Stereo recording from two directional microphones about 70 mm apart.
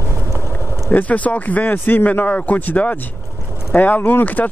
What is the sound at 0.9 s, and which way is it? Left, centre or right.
Speech, left.